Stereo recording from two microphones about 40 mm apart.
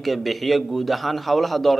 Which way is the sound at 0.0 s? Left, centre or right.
Centre.